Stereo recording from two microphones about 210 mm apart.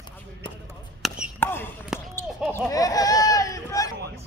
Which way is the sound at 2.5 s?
15° left (ahead or behind).